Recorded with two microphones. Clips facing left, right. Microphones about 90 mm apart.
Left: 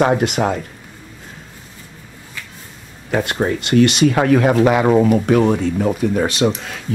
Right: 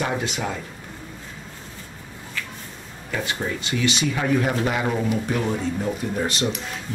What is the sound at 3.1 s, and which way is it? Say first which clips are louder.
Speech: left 9 dB; 60° left (ahead or behind).